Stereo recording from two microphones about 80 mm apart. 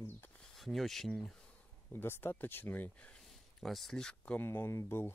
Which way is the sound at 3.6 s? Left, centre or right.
Centre.